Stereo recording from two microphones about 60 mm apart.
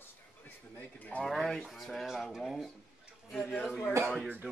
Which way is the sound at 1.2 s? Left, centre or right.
Centre.